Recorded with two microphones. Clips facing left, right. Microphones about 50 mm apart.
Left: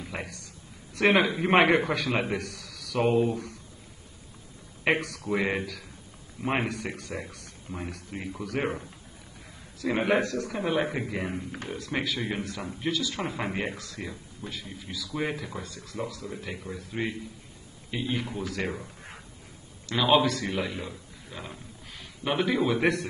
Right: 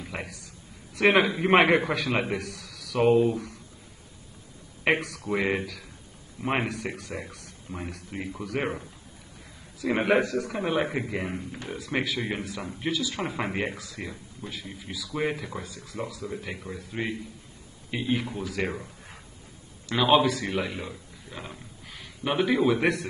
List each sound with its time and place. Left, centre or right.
0.0 s a sound: centre
0.9 s speech: centre
4.8 s speech: centre
10.0 s speech: centre
19.9 s a man's voice: centre